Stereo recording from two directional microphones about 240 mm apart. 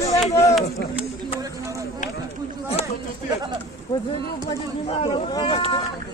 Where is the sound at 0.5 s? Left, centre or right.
Centre.